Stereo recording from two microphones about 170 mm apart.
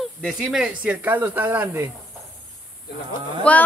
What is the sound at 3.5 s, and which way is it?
Speech, 5° left (ahead or behind).